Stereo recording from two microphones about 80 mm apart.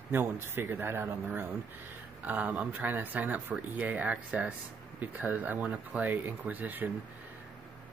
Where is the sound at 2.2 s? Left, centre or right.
Centre.